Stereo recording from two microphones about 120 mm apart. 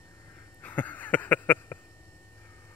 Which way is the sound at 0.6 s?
15° left (ahead or behind).